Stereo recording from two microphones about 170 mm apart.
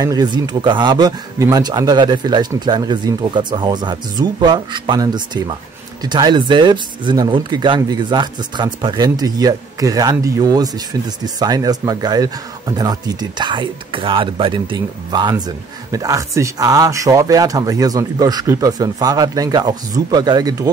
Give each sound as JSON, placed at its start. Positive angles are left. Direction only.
{"t": 0.0, "sound": "speech", "side_deg": -20}